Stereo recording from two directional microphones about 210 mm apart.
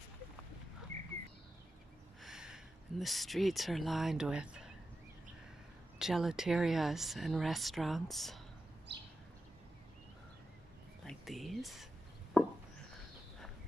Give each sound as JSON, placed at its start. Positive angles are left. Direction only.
{"t": 2.2, "sound": "speech", "side_deg": -5}
{"t": 5.9, "sound": "speech", "side_deg": 0}
{"t": 8.9, "sound": "bird", "side_deg": -55}
{"t": 11.1, "sound": "speech", "side_deg": 0}
{"t": 12.4, "sound": "chopping", "side_deg": 0}